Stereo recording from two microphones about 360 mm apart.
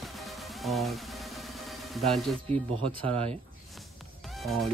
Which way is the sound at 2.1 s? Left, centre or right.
Centre.